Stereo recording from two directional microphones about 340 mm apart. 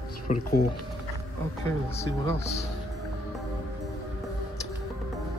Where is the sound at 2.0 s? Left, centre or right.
Centre.